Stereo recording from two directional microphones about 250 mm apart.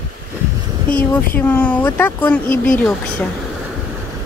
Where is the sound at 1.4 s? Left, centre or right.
Centre.